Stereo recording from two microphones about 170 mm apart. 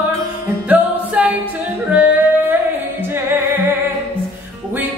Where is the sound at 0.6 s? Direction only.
10° right (ahead or behind).